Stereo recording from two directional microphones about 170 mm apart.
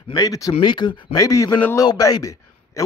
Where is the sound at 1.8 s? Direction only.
25° left (ahead or behind).